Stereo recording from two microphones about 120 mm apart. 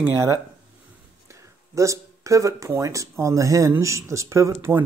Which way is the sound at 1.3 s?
25° right (ahead or behind).